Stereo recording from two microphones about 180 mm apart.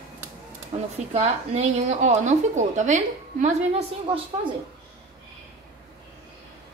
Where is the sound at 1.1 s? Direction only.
35° right (ahead or behind).